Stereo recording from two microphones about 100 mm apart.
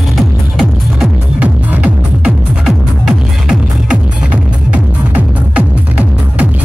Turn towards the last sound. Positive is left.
turn(degrees=-15)  # may be behind; listen again after turning